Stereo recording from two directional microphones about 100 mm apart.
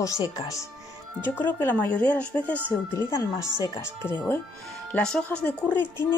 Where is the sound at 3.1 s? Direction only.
25° left (ahead or behind).